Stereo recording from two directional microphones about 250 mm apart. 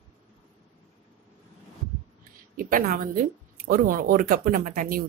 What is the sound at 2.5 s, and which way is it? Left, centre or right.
A woman's voice, right.